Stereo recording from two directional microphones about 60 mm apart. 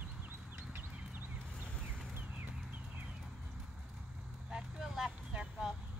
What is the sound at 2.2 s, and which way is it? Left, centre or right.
Horse, right.